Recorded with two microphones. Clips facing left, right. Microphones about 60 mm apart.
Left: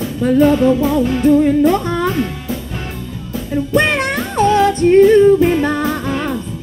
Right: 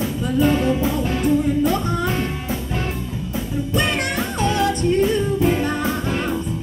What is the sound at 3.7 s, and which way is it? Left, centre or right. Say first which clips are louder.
Music: left 7 dB; left.